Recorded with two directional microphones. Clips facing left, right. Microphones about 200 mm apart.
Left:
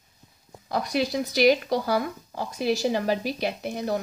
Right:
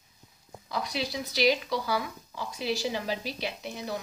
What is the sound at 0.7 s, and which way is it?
A woman's voice, 50° left (ahead or behind).